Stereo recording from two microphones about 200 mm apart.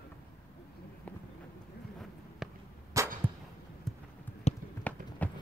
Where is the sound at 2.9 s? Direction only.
15° right (ahead or behind).